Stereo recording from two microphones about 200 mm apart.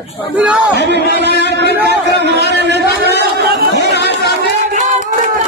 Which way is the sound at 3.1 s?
55° right (ahead or behind).